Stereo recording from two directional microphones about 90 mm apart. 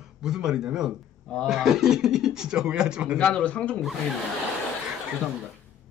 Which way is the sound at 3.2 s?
15° left (ahead or behind).